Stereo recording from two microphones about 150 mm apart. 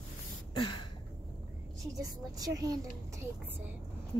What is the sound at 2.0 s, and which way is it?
Speech, 25° right (ahead or behind).